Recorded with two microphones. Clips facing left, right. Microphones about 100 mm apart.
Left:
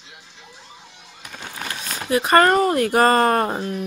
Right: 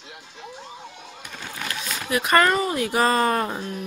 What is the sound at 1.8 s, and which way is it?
Speech, 40° left (ahead or behind).